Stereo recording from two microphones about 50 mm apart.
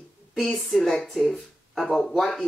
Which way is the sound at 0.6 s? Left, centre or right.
Centre.